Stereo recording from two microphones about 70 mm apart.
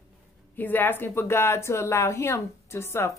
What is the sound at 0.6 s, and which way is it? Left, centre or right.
Speech, left.